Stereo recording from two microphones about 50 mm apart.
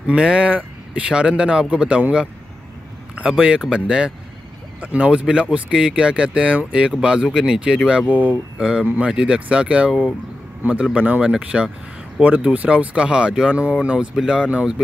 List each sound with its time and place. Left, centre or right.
0.0 s speech: centre
8.1 s speech: right
8.5 s speech: centre